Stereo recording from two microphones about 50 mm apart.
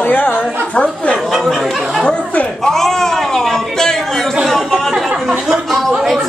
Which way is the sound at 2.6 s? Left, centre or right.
Centre.